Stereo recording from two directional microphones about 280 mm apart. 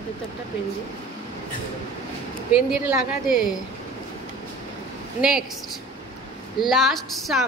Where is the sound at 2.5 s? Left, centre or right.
Centre.